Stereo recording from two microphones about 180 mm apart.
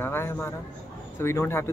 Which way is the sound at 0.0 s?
15° left (ahead or behind).